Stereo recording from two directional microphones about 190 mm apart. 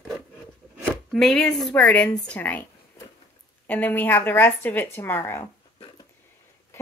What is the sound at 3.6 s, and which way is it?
A woman's voice, 10° left (ahead or behind).